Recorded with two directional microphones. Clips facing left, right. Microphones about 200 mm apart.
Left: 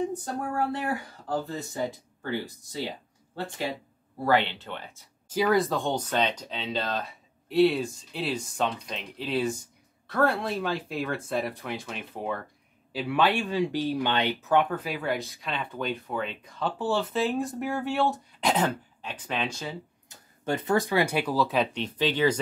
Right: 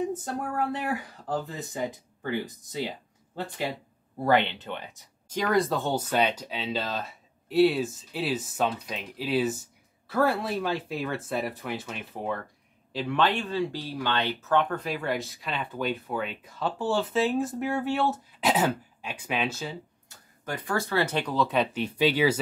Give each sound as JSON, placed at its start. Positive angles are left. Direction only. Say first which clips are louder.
{"t": 0.1, "sound": "speech", "louder": "even", "side_deg": -20}
{"t": 4.3, "sound": "speech", "louder": "right 1 dB", "side_deg": -20}
{"t": 5.3, "sound": "speech", "louder": "left 1 dB", "side_deg": 5}
{"t": 20.1, "sound": "speech", "louder": "left 6 dB", "side_deg": 25}
{"t": 21.8, "sound": "speech", "louder": "right 3 dB", "side_deg": -10}